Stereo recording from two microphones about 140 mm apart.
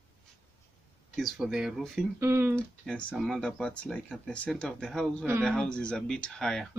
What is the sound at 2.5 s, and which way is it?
Speech, 10° left (ahead or behind).